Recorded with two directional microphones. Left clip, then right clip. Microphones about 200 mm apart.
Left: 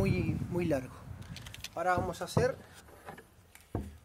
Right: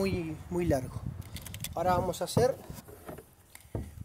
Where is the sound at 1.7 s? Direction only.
15° right (ahead or behind).